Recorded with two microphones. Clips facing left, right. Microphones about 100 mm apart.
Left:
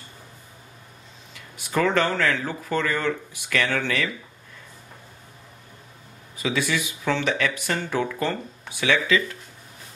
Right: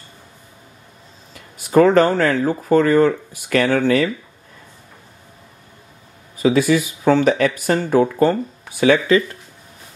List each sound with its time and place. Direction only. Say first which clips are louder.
1.3 s speech: right 11 dB; 40° right (ahead or behind)
6.3 s speech: right 10 dB; 45° right (ahead or behind)